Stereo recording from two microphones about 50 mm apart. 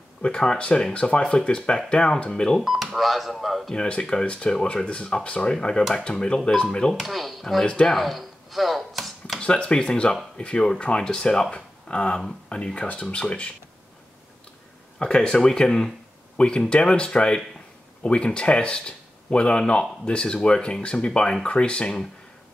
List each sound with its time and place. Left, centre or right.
0.2 s speech: centre
2.6 s speech: centre
3.7 s speech: centre
7.0 s speech: centre
7.6 s speech: centre
7.9 s a sound: centre
9.4 s speech: centre
15.0 s speech: centre